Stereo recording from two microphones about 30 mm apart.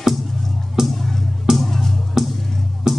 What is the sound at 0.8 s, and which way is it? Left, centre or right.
Music, centre.